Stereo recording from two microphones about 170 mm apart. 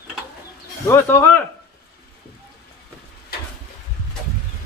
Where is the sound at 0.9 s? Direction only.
15° left (ahead or behind).